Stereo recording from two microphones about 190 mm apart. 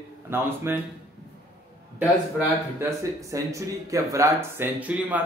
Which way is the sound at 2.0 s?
10° right (ahead or behind).